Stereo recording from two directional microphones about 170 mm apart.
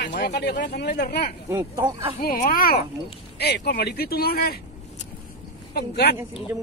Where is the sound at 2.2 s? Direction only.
55° left (ahead or behind).